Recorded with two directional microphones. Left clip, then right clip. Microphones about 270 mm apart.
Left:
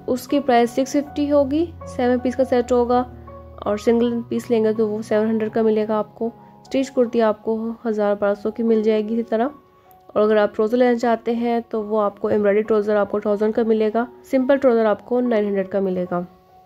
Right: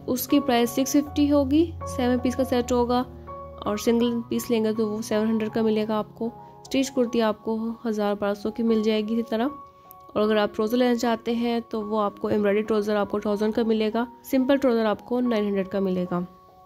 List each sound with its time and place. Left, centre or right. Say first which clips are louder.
0.0 s speech: left 3 dB; right